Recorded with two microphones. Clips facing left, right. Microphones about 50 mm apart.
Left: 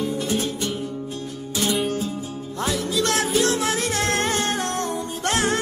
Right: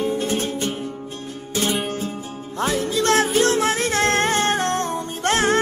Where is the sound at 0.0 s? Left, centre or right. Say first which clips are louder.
Right 2 dB; right.